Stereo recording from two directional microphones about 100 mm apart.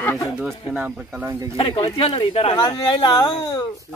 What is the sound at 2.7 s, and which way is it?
Speech, 50° left (ahead or behind).